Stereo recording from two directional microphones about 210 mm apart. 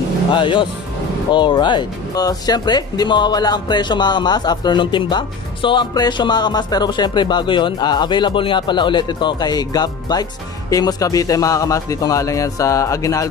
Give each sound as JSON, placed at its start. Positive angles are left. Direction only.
{"t": 0.3, "sound": "a man's voice", "side_deg": 25}